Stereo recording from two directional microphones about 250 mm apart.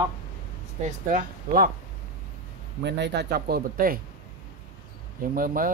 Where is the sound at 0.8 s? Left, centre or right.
Right.